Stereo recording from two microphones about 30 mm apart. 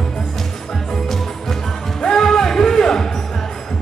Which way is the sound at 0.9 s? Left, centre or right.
Centre.